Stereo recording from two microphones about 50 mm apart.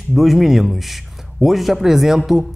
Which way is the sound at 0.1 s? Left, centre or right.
Centre.